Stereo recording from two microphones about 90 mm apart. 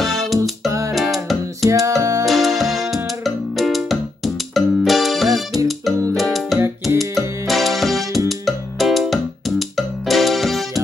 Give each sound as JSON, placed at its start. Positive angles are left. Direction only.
{"t": 0.0, "sound": "music", "side_deg": 0}
{"t": 0.4, "sound": "music", "side_deg": -35}
{"t": 0.9, "sound": "music", "side_deg": 0}
{"t": 1.7, "sound": "music", "side_deg": -40}
{"t": 2.2, "sound": "music", "side_deg": 0}